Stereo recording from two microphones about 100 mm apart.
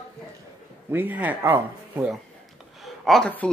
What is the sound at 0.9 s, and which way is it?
Speech, 20° right (ahead or behind).